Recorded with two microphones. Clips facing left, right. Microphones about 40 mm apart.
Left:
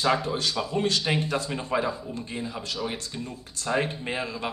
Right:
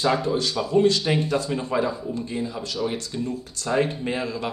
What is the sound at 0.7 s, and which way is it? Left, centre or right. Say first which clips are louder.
Speech: right 8 dB; left.